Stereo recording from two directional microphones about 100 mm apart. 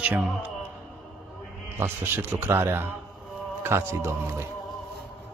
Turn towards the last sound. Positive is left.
turn(degrees=-25)  # may be behind; listen again after turning